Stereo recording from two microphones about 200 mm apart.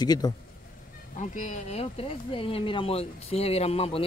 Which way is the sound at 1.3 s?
35° left (ahead or behind).